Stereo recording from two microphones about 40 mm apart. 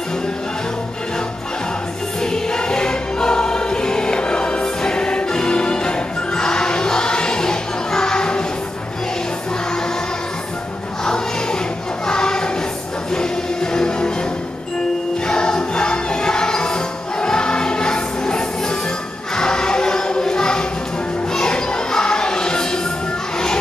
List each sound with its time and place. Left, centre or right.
2.2 s music: centre
12.1 s choir: centre
13.1 s music: centre
15.2 s music: centre
19.3 s choir: centre
21.3 s music: centre